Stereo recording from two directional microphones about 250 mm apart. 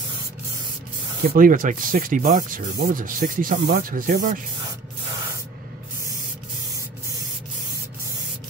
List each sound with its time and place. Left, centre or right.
1.3 s speech: right